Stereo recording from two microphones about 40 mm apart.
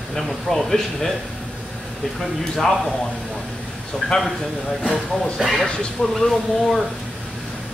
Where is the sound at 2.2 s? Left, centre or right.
Centre.